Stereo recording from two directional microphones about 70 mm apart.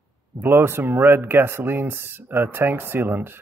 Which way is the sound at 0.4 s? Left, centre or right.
Right.